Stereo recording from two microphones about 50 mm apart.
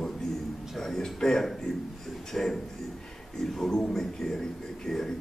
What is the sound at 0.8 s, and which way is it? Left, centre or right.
Speech, centre.